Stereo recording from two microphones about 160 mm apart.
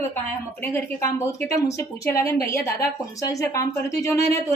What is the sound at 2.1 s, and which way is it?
A woman's voice, 20° left (ahead or behind).